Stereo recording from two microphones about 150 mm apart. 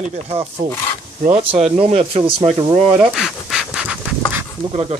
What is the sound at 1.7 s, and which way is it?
Speech, 40° right (ahead or behind).